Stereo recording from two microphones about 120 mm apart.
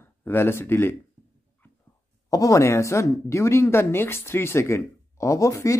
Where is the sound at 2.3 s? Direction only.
30° left (ahead or behind).